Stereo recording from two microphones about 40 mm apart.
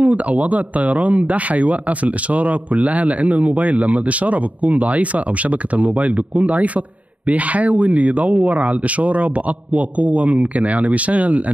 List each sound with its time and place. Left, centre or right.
0.0 s speech: right